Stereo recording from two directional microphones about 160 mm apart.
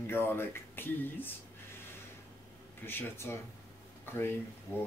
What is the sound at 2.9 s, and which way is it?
Speech, 15° left (ahead or behind).